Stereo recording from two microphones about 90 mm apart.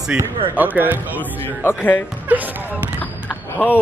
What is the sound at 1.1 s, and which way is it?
Speech, 20° left (ahead or behind).